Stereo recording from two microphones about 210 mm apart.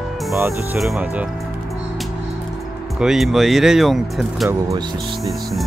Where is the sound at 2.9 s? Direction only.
Centre (ahead or behind).